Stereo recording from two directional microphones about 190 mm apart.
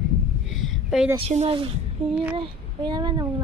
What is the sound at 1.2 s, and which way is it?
Speech, 35° right (ahead or behind).